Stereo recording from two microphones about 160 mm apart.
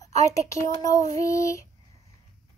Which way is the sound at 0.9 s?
20° left (ahead or behind).